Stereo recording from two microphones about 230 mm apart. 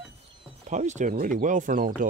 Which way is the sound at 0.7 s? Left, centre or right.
Right.